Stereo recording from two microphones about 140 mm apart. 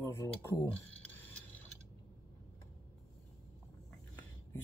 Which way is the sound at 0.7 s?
10° left (ahead or behind).